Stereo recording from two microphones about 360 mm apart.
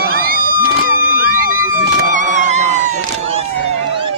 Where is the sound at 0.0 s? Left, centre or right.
Right.